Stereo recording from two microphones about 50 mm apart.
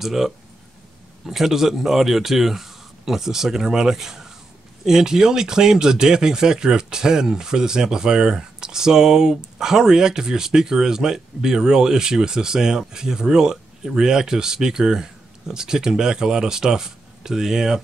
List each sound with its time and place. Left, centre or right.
0.0 s speech: centre